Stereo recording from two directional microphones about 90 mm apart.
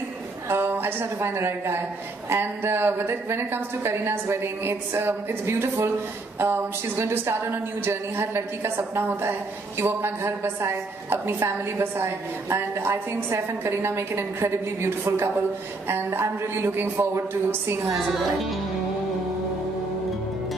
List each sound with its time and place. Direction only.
0.5 s a woman's voice: 25° right (ahead or behind)